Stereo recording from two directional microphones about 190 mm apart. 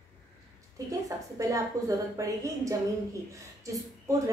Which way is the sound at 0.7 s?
15° right (ahead or behind).